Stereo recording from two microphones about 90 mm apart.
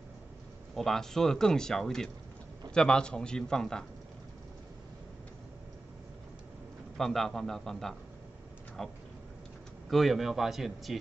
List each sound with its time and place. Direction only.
0.7 s a man's voice: 5° left (ahead or behind)
7.0 s speech: 5° left (ahead or behind)